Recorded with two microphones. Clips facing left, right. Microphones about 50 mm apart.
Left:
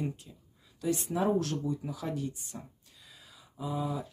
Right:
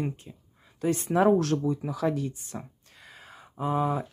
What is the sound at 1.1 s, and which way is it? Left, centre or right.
Speech, right.